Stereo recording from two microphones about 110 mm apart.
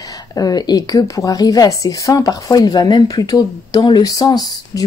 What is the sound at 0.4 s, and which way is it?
A woman's voice, 35° left (ahead or behind).